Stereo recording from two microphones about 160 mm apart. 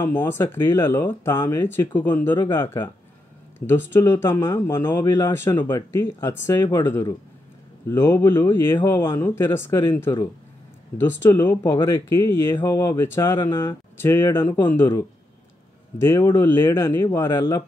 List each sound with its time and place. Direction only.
0.0 s speech: 15° left (ahead or behind)
11.2 s speech: 20° left (ahead or behind)